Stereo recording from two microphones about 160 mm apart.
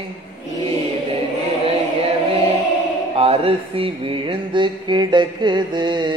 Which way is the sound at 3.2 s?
35° right (ahead or behind).